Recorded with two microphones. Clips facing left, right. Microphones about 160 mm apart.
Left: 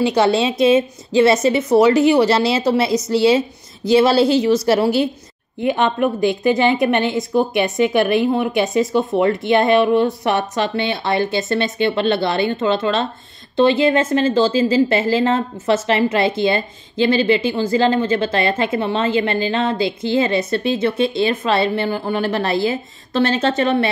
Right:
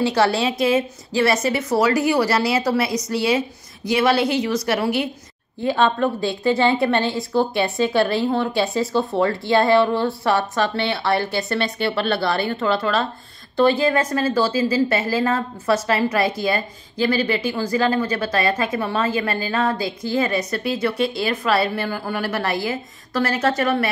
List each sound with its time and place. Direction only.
0.0 s a woman's voice: 20° left (ahead or behind)
5.6 s a woman's voice: 15° left (ahead or behind)